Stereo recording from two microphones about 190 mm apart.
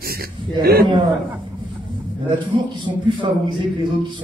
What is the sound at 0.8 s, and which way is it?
Speech, 25° right (ahead or behind).